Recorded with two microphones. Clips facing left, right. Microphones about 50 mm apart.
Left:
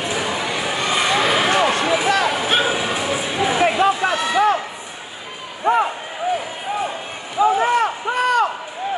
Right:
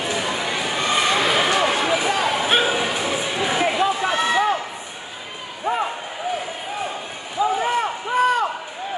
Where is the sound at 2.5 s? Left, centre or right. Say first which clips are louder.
Even; centre.